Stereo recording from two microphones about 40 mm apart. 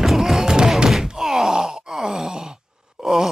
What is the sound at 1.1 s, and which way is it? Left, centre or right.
Groan, centre.